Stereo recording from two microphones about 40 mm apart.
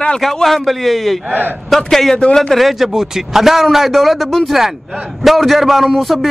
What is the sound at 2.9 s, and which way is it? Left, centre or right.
A man's voice, centre.